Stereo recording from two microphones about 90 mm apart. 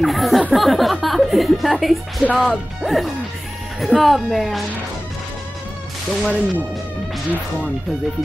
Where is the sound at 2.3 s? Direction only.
Centre (ahead or behind).